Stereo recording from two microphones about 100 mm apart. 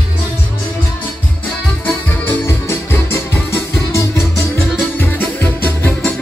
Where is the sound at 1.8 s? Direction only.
15° left (ahead or behind).